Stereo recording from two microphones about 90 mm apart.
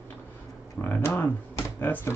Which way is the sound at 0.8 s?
25° left (ahead or behind).